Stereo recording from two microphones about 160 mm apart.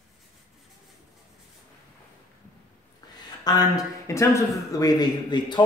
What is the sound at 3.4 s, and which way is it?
A man's voice, 25° left (ahead or behind).